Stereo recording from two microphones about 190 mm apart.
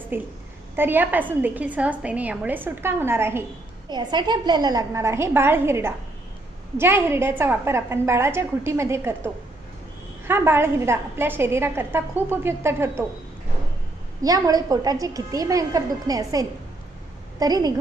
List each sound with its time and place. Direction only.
0.1 s a woman's voice: 10° right (ahead or behind)
3.9 s a woman's voice: 25° right (ahead or behind)
14.2 s a woman's voice: 20° right (ahead or behind)